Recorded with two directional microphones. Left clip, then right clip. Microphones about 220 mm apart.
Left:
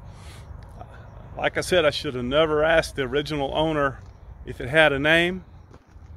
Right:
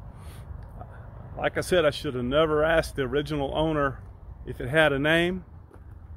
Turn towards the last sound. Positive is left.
turn(degrees=5)  # may be behind; listen again after turning